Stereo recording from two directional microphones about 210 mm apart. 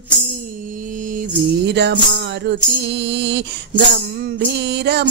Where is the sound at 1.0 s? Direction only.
45° right (ahead or behind).